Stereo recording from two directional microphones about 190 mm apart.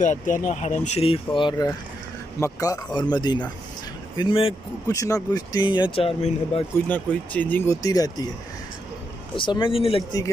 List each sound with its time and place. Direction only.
0.0 s speech: 40° left (ahead or behind)
4.9 s speech: 20° left (ahead or behind)
6.9 s speech: 10° left (ahead or behind)
9.3 s speech: 25° left (ahead or behind)